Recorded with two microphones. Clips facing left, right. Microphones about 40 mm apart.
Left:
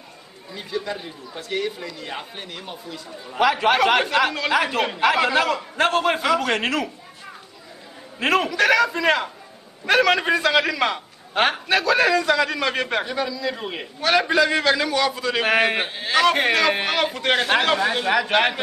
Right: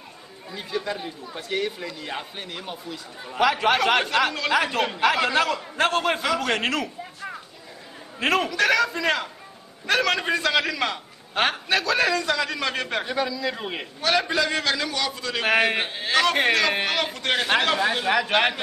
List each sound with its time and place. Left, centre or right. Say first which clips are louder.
0.6 s speech: left 1 dB; centre
8.2 s a man's voice: left 2 dB; centre
14.0 s speech: left 4 dB; centre